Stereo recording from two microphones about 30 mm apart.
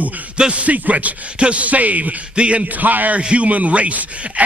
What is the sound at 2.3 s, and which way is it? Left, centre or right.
Speech, right.